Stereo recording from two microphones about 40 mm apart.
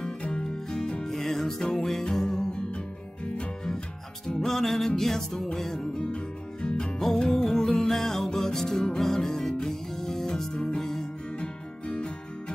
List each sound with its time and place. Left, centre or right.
0.0 s music: left
0.4 s music: centre
5.9 s music: left
7.2 s music: centre
11.3 s music: left